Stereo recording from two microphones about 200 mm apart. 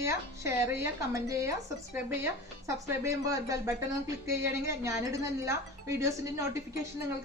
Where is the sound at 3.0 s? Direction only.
15° right (ahead or behind).